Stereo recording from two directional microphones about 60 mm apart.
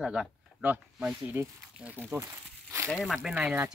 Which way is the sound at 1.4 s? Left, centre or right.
Right.